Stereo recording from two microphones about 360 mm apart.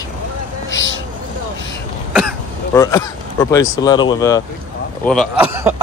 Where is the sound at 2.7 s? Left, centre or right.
Centre.